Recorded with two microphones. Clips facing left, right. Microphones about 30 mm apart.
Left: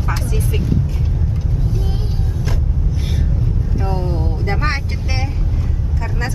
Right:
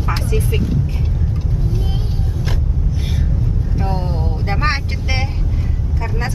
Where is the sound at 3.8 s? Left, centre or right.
Centre.